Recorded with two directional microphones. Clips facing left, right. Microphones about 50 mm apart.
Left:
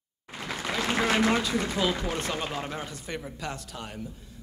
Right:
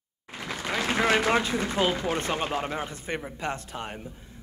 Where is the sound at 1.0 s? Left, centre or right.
Right.